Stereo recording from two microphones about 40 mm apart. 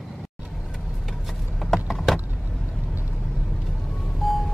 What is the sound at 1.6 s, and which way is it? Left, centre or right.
Vehicle, centre.